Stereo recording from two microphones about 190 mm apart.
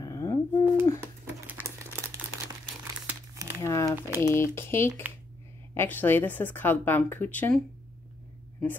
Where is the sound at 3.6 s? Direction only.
15° left (ahead or behind).